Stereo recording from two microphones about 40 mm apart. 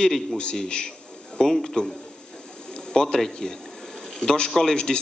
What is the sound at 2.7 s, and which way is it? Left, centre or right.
Bird, centre.